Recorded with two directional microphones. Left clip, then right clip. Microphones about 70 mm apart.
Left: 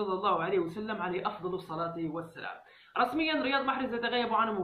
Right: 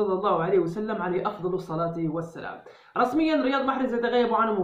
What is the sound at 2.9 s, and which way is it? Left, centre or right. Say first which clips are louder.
A man's voice: right 6 dB; right.